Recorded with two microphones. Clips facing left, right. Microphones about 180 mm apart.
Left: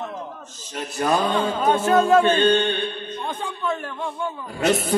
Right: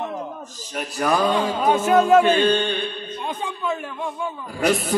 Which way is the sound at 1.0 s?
25° left (ahead or behind).